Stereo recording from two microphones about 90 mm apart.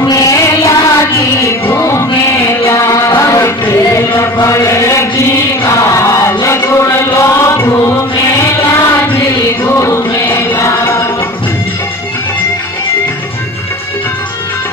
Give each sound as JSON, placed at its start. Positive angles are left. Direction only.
{"t": 0.1, "sound": "music", "side_deg": 40}
{"t": 4.4, "sound": "chant", "side_deg": 40}
{"t": 9.7, "sound": "choir", "side_deg": 30}